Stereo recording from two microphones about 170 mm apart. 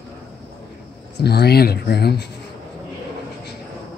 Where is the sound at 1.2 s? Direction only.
70° left (ahead or behind).